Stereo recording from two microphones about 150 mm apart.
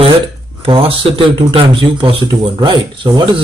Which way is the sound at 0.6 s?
35° right (ahead or behind).